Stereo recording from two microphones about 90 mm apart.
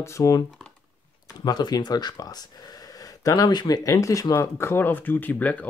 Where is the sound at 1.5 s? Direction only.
45° left (ahead or behind).